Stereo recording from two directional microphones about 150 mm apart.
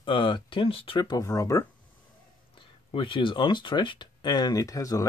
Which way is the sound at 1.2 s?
20° left (ahead or behind).